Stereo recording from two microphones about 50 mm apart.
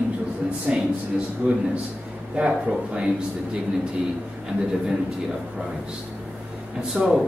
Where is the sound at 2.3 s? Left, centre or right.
Right.